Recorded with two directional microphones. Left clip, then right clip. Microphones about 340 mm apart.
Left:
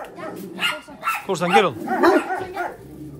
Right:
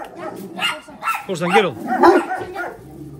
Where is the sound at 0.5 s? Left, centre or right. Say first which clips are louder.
Right 1 dB; centre.